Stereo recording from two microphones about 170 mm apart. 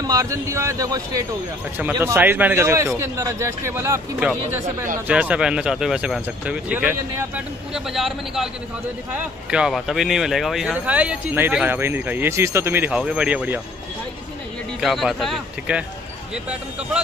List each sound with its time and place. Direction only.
0.0 s speech: 20° right (ahead or behind)
14.8 s speech: centre (ahead or behind)